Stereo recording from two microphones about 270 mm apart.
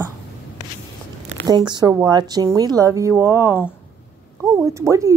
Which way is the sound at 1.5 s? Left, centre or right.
Centre.